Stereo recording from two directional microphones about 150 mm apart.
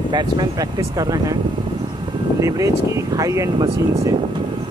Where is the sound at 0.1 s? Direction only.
30° right (ahead or behind).